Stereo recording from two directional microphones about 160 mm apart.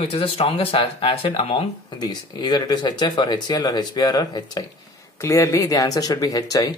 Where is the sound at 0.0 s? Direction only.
35° left (ahead or behind).